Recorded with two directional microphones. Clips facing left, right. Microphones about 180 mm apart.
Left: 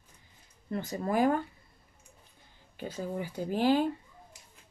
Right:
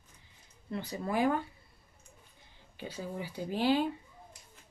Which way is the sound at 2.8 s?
50° left (ahead or behind).